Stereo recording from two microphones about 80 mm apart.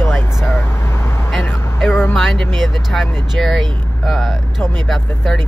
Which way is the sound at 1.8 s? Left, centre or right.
Left.